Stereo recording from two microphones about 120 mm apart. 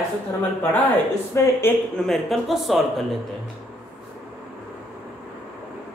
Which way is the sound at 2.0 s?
Centre (ahead or behind).